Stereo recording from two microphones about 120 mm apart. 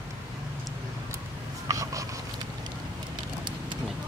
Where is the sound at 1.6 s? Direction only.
30° right (ahead or behind).